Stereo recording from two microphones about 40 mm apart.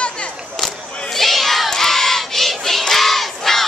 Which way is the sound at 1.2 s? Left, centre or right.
Centre.